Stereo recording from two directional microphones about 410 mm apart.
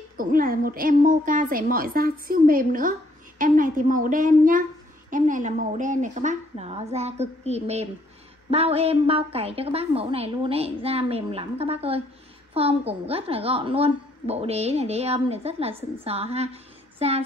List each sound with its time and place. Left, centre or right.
0.2 s a woman's voice: centre